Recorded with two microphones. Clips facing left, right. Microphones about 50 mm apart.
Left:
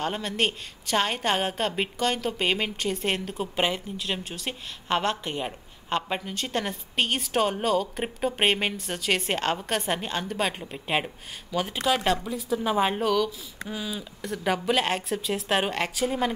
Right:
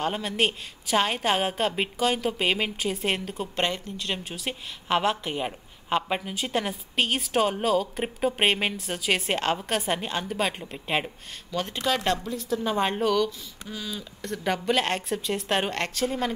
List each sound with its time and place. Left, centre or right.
0.0 s a woman's voice: centre
13.7 s speech: centre
14.2 s a woman's voice: centre